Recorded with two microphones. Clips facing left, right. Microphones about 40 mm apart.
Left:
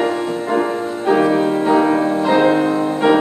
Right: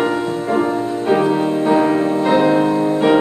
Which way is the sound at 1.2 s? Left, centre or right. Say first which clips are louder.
Left 1 dB; centre.